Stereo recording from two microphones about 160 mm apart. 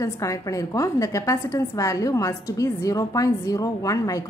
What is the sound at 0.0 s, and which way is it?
A woman's voice, 20° left (ahead or behind).